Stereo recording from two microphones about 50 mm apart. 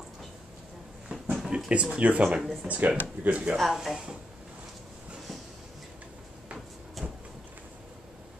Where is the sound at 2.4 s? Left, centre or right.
Centre.